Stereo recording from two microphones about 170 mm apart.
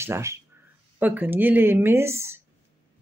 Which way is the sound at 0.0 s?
15° right (ahead or behind).